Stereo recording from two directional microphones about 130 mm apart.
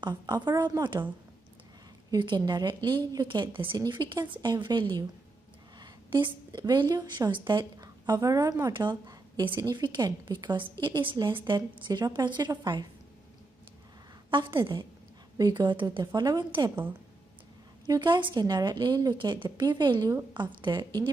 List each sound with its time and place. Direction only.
0.0 s a woman's voice: 30° right (ahead or behind)
2.0 s a woman's voice: 35° right (ahead or behind)
14.3 s a woman's voice: 40° right (ahead or behind)
17.8 s a woman's voice: 30° right (ahead or behind)